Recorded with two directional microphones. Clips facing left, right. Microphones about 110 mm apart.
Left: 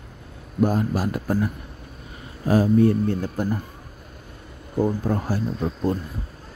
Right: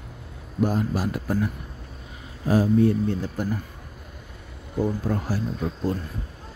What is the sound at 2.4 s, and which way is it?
Speech, 50° left (ahead or behind).